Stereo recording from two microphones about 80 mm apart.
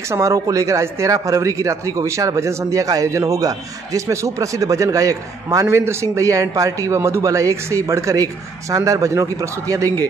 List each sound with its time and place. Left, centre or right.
0.1 s a man's voice: right